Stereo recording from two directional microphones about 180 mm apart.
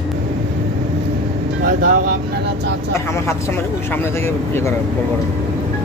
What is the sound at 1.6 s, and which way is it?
Music, 50° right (ahead or behind).